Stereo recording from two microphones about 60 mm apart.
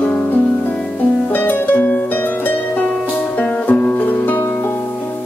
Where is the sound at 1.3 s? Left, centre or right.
Left.